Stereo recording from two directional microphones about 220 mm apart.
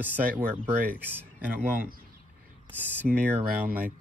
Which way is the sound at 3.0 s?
40° right (ahead or behind).